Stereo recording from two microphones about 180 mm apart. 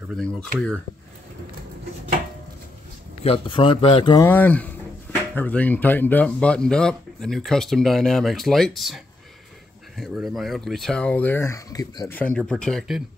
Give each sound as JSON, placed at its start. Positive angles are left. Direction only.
{"t": 0.1, "sound": "speech", "side_deg": 5}
{"t": 3.3, "sound": "speech", "side_deg": 30}
{"t": 4.3, "sound": "speech", "side_deg": 10}
{"t": 12.2, "sound": "speech", "side_deg": 5}